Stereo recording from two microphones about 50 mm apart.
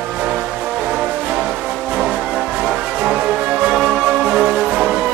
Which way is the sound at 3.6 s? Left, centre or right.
Centre.